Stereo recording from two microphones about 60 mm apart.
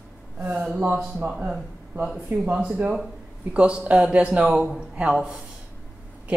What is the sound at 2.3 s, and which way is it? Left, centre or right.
Speech, right.